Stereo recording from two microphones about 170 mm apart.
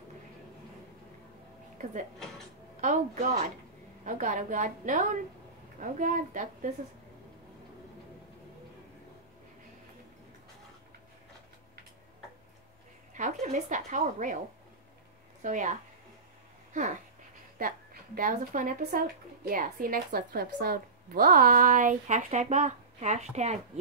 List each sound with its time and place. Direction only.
2.1 s speech: centre (ahead or behind)
2.8 s speech: 45° right (ahead or behind)
13.1 s a woman's voice: 45° right (ahead or behind)
15.4 s a woman's voice: 50° right (ahead or behind)